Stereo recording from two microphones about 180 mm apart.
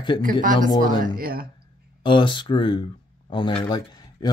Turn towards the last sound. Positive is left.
turn(degrees=25)  # may be behind; listen again after turning